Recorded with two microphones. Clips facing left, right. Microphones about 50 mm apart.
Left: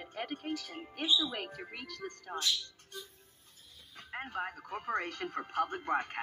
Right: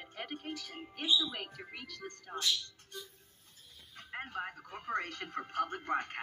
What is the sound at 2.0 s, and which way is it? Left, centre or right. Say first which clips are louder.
Music: left 4 dB; centre.